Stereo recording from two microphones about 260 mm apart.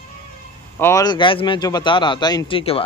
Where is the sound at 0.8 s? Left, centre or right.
Centre.